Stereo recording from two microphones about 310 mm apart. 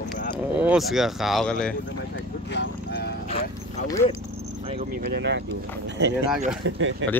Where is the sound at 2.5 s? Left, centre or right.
Left.